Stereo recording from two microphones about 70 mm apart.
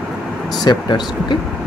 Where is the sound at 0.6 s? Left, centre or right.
Left.